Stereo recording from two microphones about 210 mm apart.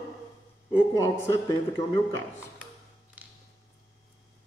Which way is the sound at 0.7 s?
15° left (ahead or behind).